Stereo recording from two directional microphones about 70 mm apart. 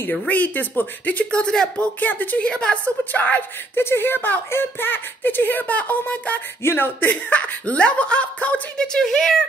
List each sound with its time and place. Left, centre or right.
0.3 s a woman's voice: left
2.0 s a woman's voice: left
6.6 s a woman's voice: left
8.8 s speech: centre